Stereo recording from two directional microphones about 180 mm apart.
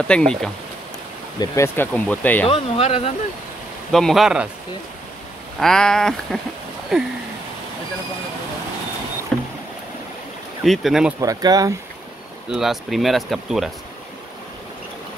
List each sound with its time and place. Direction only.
0.1 s speech: 5° left (ahead or behind)
1.4 s speech: 15° left (ahead or behind)
2.4 s speech: 35° left (ahead or behind)
3.9 s speech: centre (ahead or behind)
5.6 s speech: 5° left (ahead or behind)
9.3 s rowboat: 5° left (ahead or behind)
10.6 s speech: centre (ahead or behind)
11.1 s speech: 20° right (ahead or behind)
12.4 s speech: centre (ahead or behind)